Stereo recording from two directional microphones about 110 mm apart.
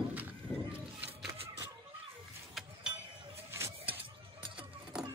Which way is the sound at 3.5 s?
20° right (ahead or behind).